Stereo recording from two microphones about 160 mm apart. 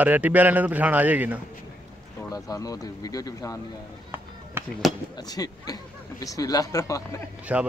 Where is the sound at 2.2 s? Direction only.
20° left (ahead or behind).